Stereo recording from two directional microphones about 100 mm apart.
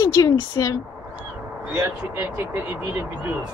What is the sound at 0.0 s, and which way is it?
Speech, 35° left (ahead or behind).